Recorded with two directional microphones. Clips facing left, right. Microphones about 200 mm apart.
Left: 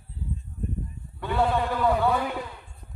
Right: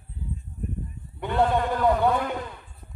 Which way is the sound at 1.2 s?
20° right (ahead or behind).